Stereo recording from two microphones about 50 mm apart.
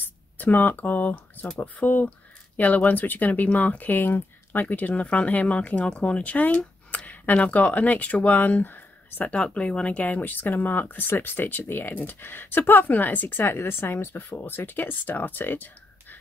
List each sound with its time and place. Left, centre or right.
0.0 s speech: left
9.3 s speech: left